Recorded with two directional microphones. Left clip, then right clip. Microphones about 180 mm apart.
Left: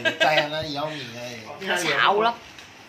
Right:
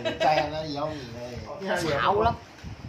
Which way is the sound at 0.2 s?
25° right (ahead or behind).